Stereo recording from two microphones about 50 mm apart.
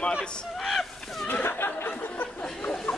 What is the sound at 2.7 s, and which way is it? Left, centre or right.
Chatter, centre.